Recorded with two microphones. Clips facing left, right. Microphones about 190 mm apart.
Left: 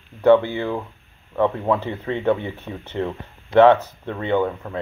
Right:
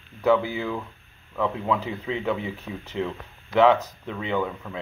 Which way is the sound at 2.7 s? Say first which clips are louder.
Left 2 dB; 45° left (ahead or behind).